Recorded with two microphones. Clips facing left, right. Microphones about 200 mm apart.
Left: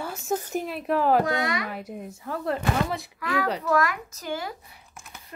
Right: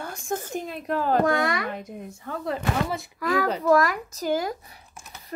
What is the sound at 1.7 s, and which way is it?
A woman's voice, 5° left (ahead or behind).